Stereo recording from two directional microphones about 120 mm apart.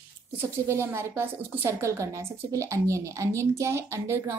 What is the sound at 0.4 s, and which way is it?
A woman's voice, 20° right (ahead or behind).